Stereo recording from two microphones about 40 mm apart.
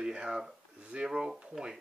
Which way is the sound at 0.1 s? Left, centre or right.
Right.